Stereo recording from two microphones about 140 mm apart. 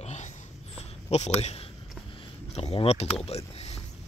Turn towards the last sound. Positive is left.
turn(degrees=50)  # may be behind; listen again after turning